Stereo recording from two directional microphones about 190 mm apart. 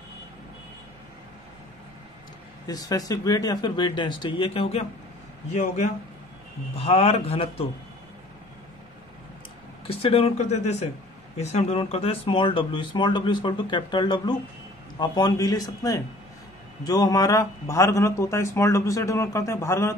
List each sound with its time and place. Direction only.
2.6 s speech: 20° left (ahead or behind)
9.8 s a man's voice: 30° left (ahead or behind)